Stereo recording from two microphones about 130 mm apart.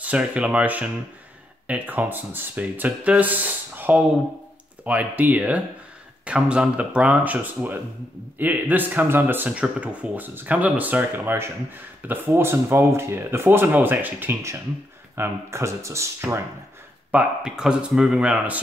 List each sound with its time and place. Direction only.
0.0 s speech: 10° right (ahead or behind)
17.1 s speech: 10° right (ahead or behind)